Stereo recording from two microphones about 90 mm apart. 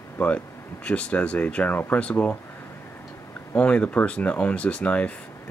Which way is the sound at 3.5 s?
15° left (ahead or behind).